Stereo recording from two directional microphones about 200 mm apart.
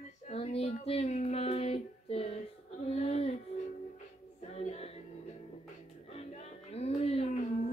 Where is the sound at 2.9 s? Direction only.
30° left (ahead or behind).